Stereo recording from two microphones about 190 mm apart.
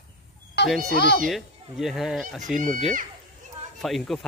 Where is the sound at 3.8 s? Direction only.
Centre (ahead or behind).